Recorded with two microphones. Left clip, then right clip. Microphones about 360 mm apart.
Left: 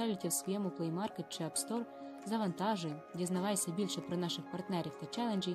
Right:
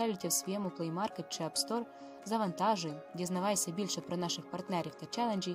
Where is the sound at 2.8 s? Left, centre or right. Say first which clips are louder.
Right 1 dB; centre.